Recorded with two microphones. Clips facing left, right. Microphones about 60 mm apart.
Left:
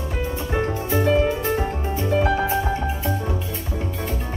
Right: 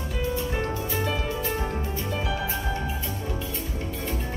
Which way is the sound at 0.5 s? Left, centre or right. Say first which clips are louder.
Left 6 dB; left.